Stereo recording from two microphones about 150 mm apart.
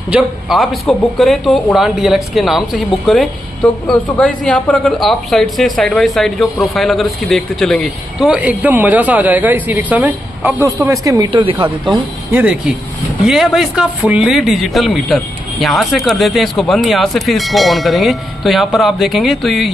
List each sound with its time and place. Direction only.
0.1 s speech: centre (ahead or behind)
8.3 s speech: 10° right (ahead or behind)
11.2 s speech: 35° right (ahead or behind)
12.3 s speech: 10° right (ahead or behind)